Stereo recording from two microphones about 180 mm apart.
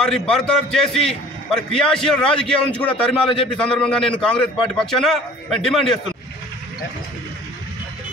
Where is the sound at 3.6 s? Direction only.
5° left (ahead or behind).